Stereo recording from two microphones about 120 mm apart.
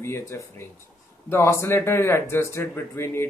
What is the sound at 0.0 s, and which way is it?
Speech, 20° left (ahead or behind).